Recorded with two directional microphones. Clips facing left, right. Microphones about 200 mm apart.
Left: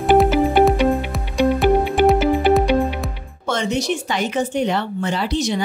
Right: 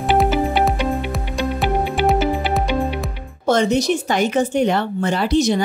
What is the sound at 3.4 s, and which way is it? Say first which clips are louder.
Speech: right 5 dB; 40° right (ahead or behind).